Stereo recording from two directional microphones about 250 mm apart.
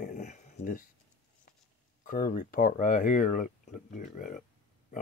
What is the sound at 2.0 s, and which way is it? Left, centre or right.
Speech, left.